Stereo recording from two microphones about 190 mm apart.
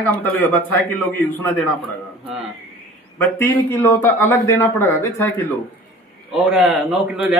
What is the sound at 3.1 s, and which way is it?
A man's voice, 10° left (ahead or behind).